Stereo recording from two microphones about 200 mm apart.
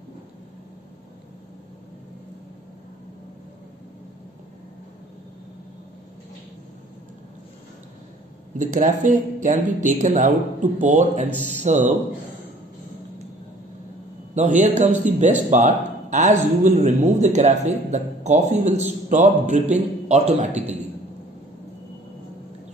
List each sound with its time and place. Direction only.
8.5 s speech: 35° right (ahead or behind)
14.5 s speech: 35° right (ahead or behind)